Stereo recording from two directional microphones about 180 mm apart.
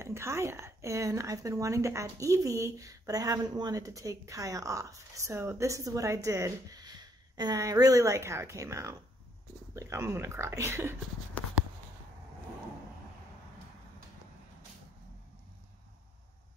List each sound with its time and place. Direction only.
0.0 s a woman's voice: 15° right (ahead or behind)